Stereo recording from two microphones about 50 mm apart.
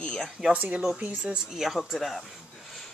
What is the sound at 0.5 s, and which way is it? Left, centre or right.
Speech, right.